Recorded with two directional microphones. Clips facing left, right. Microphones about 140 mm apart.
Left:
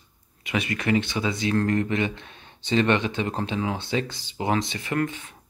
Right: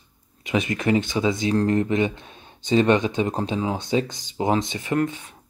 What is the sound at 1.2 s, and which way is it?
Speech, 20° right (ahead or behind).